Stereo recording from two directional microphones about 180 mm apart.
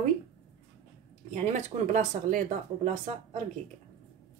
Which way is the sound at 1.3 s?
40° right (ahead or behind).